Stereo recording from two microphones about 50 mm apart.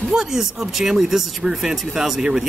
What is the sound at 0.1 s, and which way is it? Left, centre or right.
Speech, centre.